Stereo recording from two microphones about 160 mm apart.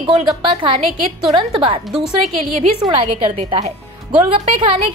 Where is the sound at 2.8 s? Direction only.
35° right (ahead or behind).